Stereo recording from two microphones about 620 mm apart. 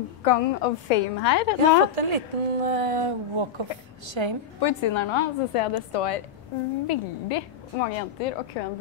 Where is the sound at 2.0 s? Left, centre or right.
Right.